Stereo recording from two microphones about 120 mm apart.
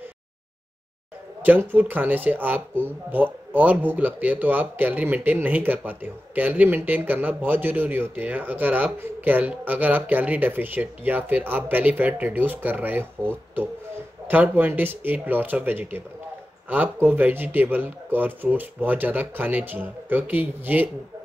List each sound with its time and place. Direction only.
1.4 s speech: 15° right (ahead or behind)